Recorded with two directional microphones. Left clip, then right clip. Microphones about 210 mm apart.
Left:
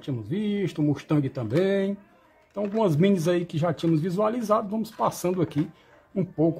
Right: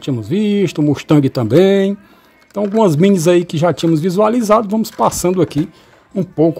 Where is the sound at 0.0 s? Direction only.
35° right (ahead or behind).